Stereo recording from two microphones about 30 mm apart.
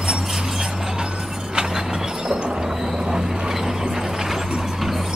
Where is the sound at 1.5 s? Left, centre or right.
Right.